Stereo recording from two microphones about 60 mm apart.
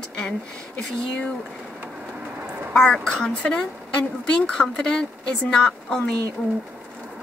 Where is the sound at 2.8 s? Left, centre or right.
Centre.